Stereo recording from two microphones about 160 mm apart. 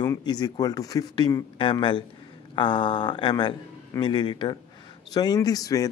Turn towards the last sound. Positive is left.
turn(degrees=20)  # may be behind; listen again after turning